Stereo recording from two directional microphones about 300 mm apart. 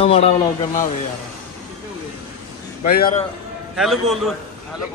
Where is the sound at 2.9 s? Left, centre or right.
Left.